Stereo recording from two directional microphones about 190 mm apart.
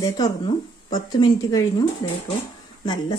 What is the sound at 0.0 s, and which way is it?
A woman's voice, 20° left (ahead or behind).